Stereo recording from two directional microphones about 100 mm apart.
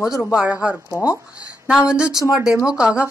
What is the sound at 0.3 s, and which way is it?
Speech, 10° right (ahead or behind).